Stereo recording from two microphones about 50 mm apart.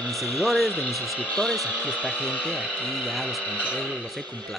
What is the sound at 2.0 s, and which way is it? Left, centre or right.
Speech, left.